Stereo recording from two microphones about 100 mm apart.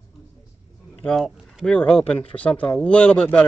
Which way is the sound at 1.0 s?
5° left (ahead or behind).